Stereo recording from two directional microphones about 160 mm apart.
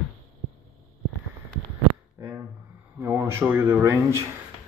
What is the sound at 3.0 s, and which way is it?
Speech, 15° right (ahead or behind).